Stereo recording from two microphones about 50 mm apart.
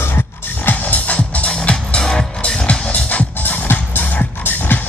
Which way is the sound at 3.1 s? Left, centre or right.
Left.